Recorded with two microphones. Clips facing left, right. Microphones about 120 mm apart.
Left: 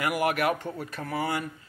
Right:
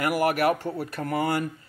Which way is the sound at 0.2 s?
40° right (ahead or behind).